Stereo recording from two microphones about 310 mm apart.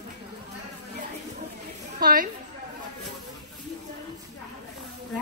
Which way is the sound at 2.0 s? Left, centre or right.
Right.